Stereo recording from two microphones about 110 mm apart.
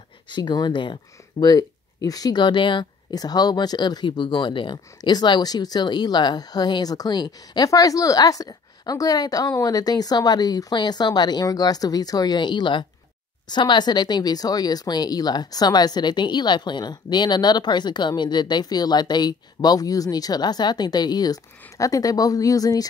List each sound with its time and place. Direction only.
0.3 s speech: 40° left (ahead or behind)
1.4 s speech: 35° left (ahead or behind)